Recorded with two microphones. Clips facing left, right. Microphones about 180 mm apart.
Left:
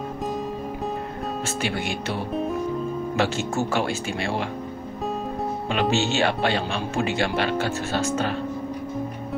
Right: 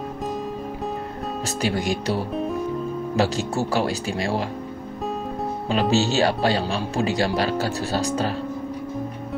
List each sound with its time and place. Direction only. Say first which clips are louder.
1.6 s speech: right 7 dB; 40° right (ahead or behind)
5.7 s speech: right 3 dB; 35° right (ahead or behind)